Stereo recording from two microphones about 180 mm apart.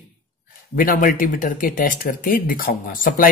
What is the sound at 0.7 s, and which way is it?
Speech, 50° left (ahead or behind).